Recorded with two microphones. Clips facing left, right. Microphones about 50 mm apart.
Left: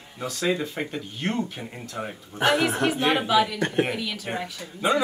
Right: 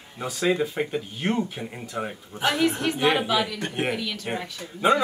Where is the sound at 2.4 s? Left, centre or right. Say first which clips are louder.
Left 3 dB; left.